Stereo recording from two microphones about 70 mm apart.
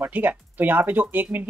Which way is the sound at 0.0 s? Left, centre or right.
Right.